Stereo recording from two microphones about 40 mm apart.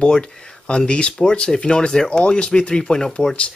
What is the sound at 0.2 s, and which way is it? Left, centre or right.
Speech, left.